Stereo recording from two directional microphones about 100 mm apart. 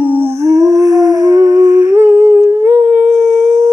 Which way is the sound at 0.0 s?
15° right (ahead or behind).